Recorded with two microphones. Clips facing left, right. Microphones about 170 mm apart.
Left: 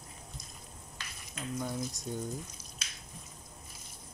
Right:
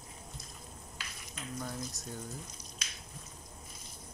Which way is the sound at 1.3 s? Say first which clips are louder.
Left 4 dB; 5° left (ahead or behind).